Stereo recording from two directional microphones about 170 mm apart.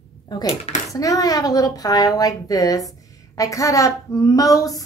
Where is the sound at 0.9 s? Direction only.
20° left (ahead or behind).